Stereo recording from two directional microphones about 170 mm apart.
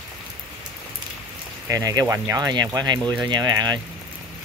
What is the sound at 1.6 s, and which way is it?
Speech, 20° right (ahead or behind).